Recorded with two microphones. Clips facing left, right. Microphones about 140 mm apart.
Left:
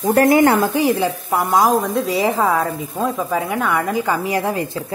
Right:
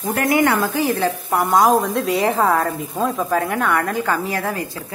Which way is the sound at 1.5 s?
Centre (ahead or behind).